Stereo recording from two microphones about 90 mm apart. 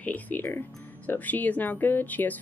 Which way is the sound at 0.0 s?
20° left (ahead or behind).